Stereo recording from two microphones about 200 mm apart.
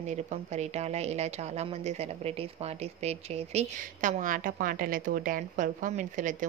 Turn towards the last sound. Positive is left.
turn(degrees=-40)  # may be behind; listen again after turning